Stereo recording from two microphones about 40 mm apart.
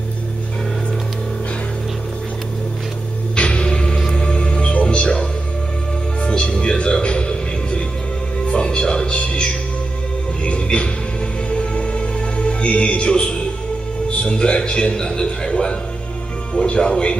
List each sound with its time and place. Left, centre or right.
3.3 s music: left
6.2 s music: left
14.0 s a sound: left
16.5 s music: centre